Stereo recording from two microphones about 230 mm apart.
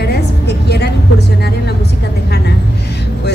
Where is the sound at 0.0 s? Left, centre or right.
Left.